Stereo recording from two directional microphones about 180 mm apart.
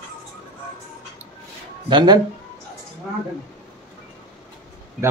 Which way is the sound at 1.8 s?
25° right (ahead or behind).